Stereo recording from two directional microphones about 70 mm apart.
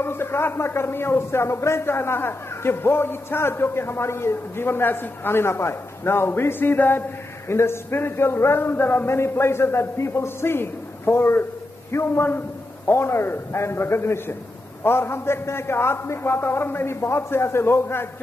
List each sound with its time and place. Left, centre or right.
0.0 s a man's voice: left